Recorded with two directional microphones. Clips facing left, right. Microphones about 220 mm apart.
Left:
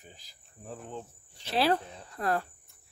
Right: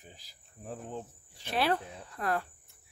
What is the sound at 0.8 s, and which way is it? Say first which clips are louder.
Speech: right 1 dB; 5° right (ahead or behind).